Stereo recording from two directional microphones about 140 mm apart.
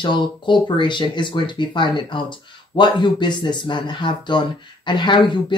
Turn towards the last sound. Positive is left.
turn(degrees=35)  # may be behind; listen again after turning